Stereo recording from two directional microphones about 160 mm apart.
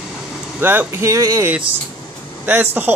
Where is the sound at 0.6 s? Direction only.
15° right (ahead or behind).